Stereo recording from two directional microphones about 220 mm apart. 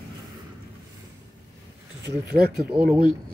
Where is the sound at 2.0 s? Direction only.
45° right (ahead or behind).